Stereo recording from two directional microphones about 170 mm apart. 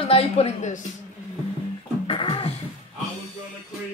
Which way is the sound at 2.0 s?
30° left (ahead or behind).